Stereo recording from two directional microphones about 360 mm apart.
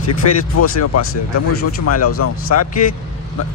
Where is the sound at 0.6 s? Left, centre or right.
Left.